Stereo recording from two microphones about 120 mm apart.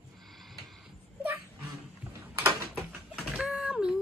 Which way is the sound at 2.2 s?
15° right (ahead or behind).